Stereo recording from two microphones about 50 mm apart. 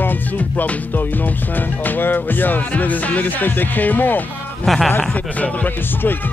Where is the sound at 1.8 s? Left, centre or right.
Left.